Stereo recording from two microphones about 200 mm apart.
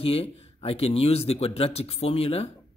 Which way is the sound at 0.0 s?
30° left (ahead or behind).